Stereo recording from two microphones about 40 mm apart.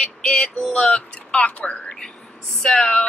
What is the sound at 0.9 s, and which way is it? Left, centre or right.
Speech, left.